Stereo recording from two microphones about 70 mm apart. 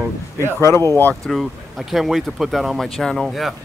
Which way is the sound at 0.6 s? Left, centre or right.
Left.